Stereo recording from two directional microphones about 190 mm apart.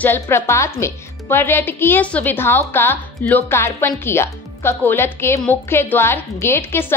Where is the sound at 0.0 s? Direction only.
10° left (ahead or behind).